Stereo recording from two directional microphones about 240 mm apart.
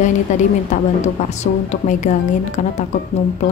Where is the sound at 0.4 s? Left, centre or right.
Left.